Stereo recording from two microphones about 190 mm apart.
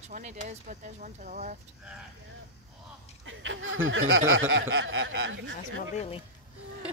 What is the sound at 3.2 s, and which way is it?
Speech, 90° right.